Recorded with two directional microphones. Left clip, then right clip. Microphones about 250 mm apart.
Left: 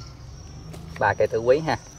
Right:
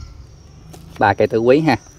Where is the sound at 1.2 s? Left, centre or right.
Right.